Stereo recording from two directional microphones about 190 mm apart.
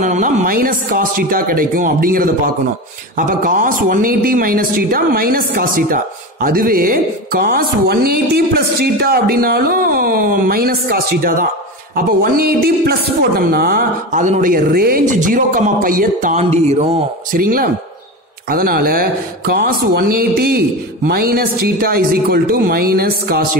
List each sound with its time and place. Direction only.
0.0 s speech: 40° right (ahead or behind)